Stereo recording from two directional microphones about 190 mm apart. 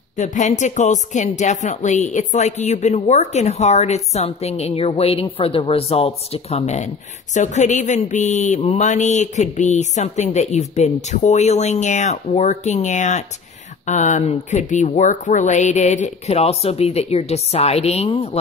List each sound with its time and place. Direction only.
0.1 s speech: 40° left (ahead or behind)